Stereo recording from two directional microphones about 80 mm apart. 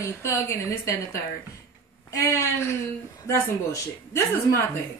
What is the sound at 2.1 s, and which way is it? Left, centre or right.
Speech, left.